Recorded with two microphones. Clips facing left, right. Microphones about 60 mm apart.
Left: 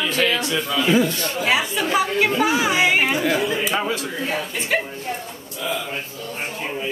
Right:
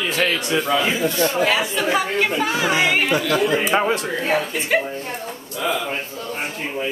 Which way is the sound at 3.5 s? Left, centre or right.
Right.